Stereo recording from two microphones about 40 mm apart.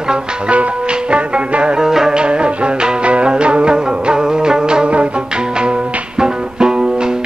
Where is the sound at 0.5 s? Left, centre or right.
Right.